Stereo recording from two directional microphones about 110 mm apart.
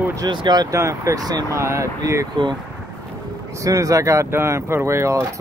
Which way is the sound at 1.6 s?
25° right (ahead or behind).